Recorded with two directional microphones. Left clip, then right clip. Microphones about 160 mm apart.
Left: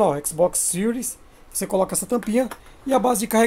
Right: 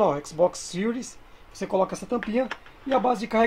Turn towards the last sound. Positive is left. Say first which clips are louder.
# left 3 dB
turn(degrees=20)  # may be behind; listen again after turning